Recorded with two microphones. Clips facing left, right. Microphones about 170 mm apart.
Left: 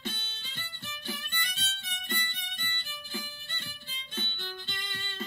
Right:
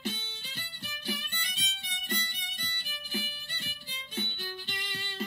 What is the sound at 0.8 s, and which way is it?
Violin, 15° right (ahead or behind).